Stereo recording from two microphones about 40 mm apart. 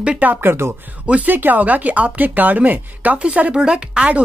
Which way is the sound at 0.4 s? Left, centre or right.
Right.